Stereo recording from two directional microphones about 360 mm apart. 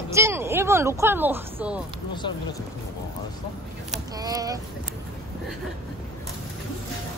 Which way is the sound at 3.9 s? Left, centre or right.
Centre.